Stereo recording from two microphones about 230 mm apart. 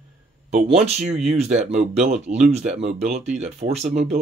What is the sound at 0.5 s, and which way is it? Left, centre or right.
Speech, right.